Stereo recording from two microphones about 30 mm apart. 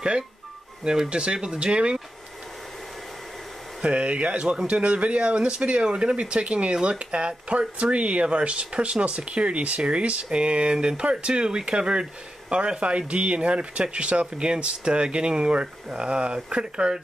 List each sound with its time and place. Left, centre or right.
1.1 s speech: right
3.8 s speech: right